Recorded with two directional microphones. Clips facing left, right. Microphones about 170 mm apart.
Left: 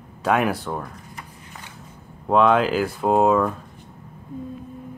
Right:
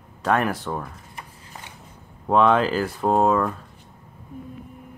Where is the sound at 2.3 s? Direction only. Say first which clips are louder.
Left 1 dB; centre (ahead or behind).